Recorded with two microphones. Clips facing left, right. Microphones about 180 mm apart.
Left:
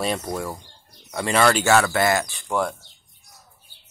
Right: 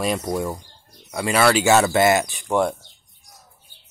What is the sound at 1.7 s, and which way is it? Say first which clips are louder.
Speech: right 3 dB; 20° right (ahead or behind).